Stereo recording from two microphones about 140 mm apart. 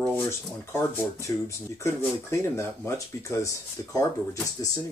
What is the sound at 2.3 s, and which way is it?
Speech, 20° left (ahead or behind).